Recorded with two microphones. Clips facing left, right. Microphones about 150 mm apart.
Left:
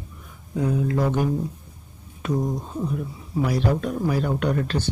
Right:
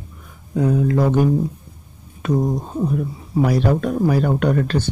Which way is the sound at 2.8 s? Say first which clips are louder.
Right 6 dB; 55° right (ahead or behind).